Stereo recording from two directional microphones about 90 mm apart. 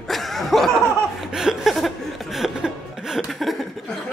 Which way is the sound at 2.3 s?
5° right (ahead or behind).